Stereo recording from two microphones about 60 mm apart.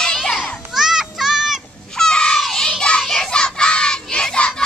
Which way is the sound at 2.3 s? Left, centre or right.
Centre.